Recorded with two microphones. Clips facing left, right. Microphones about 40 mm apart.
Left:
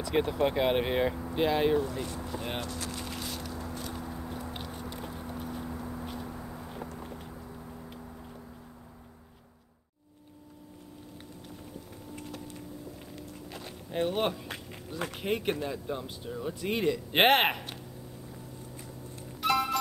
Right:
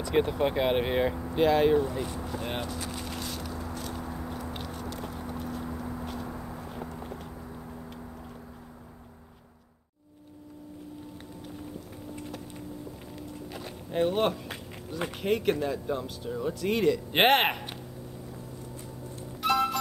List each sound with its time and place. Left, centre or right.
0.0 s speech: centre
1.8 s vehicle: centre
4.0 s biting: centre
4.5 s a sound: centre
5.7 s a sound: centre
12.2 s vehicle: centre
13.1 s a sound: centre
15.2 s speech: centre
19.4 s music: centre